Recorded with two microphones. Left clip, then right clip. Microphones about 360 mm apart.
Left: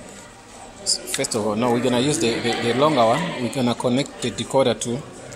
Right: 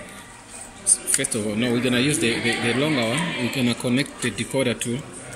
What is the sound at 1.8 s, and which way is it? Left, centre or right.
Speech, centre.